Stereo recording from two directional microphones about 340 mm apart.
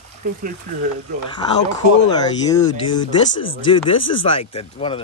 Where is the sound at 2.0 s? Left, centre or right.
Centre.